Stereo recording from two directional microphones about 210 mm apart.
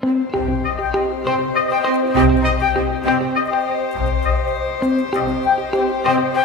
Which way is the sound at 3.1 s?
Centre (ahead or behind).